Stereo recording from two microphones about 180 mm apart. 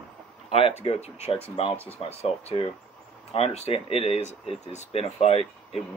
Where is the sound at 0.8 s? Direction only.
35° left (ahead or behind).